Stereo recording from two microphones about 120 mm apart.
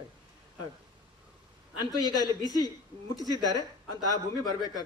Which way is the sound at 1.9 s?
30° left (ahead or behind).